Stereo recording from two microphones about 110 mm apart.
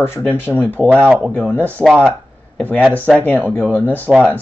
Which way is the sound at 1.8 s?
Centre (ahead or behind).